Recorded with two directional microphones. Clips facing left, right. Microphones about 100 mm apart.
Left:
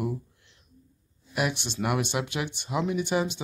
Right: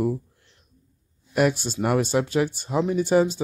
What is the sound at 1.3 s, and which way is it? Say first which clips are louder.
Speech: right 7 dB; 40° right (ahead or behind).